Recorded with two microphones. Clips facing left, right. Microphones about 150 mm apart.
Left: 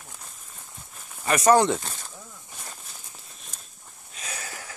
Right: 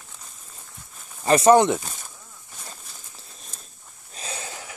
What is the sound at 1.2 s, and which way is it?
Speech, 30° right (ahead or behind).